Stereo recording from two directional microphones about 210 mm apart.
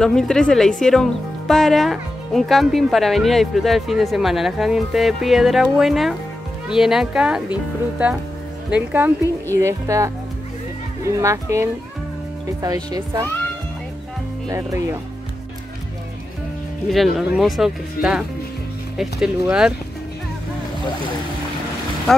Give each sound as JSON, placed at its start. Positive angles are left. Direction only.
{"t": 0.0, "sound": "speech", "side_deg": 5}
{"t": 8.6, "sound": "speech", "side_deg": -5}
{"t": 14.5, "sound": "speech", "side_deg": -15}
{"t": 16.9, "sound": "speech", "side_deg": 0}